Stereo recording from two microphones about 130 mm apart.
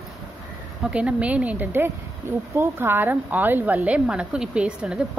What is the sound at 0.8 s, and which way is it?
A woman's voice, 10° right (ahead or behind).